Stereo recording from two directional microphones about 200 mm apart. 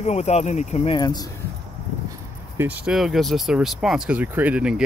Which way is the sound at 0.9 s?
20° left (ahead or behind).